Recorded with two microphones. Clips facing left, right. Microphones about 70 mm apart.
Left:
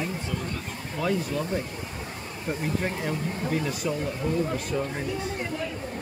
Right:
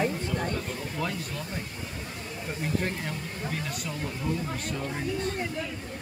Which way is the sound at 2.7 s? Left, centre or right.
Centre.